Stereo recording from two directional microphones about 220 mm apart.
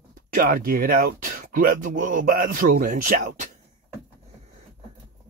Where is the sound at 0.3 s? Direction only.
40° right (ahead or behind).